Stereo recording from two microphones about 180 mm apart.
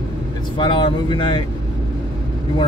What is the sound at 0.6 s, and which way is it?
Speech, 30° left (ahead or behind).